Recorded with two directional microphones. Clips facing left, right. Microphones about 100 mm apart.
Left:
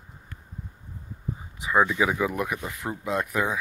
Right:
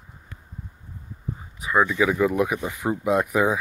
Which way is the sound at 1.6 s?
25° left (ahead or behind).